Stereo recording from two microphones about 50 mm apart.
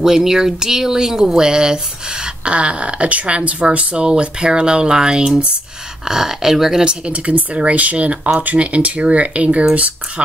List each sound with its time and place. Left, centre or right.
0.0 s speech: centre
6.9 s speech: right